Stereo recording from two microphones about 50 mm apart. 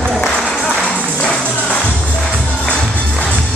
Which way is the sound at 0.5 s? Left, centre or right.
Left.